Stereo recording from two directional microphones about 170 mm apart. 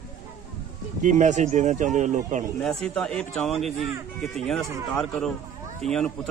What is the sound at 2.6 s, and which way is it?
Speech, 5° left (ahead or behind).